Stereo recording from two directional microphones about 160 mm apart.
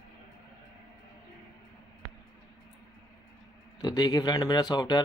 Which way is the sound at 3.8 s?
25° left (ahead or behind).